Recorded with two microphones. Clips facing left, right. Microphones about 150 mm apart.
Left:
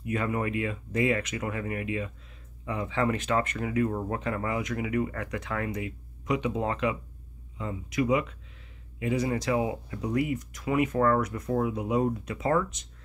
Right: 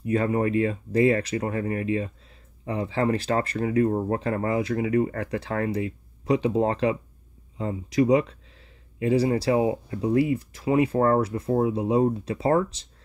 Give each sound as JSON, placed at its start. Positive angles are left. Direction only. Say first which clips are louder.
{"t": 0.0, "sound": "speech", "louder": "right 6 dB", "side_deg": -35}